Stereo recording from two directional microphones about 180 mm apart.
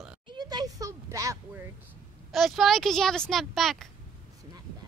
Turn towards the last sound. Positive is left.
turn(degrees=0)  # may be behind; listen again after turning